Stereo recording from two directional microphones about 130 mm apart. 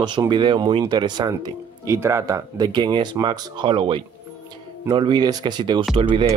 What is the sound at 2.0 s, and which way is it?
Speech, 20° right (ahead or behind).